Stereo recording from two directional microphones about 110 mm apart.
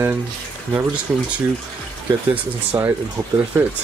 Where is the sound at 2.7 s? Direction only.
35° right (ahead or behind).